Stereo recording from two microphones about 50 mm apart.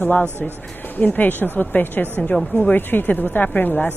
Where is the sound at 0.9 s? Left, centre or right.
Left.